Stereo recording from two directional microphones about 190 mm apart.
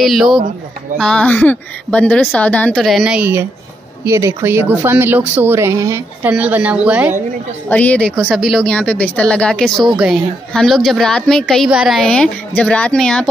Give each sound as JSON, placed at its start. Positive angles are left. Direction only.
{"t": 0.0, "sound": "a woman's voice", "side_deg": 0}
{"t": 7.7, "sound": "a woman's voice", "side_deg": 5}